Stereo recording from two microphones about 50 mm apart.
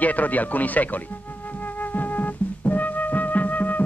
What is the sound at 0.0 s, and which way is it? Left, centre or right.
Speech, left.